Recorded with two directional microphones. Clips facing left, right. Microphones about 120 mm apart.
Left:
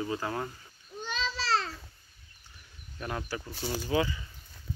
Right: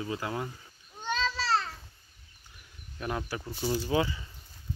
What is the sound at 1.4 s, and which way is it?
Babbling, 90° left.